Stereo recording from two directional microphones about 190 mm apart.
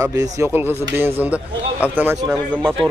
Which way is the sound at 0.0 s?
20° right (ahead or behind).